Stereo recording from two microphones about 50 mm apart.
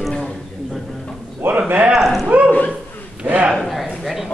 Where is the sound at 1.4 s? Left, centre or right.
Right.